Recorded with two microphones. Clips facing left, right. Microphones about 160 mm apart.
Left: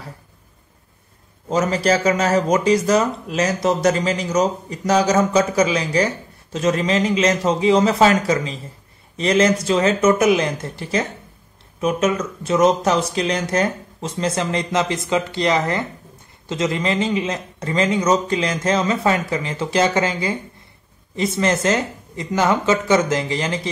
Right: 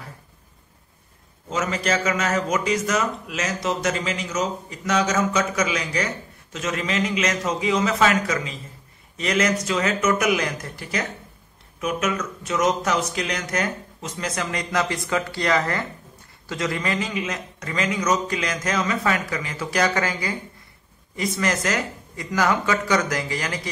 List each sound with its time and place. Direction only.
1.5 s a man's voice: 35° left (ahead or behind)